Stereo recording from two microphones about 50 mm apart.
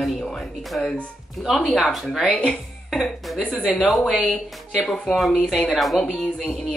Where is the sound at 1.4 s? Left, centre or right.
Centre.